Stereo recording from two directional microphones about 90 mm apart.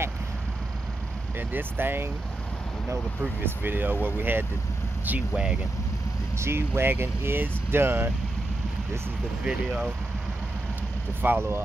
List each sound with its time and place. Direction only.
1.5 s speech: 25° right (ahead or behind)
3.2 s speech: 20° right (ahead or behind)
6.3 s speech: 30° right (ahead or behind)
9.4 s speech: 10° right (ahead or behind)
11.2 s speech: 25° right (ahead or behind)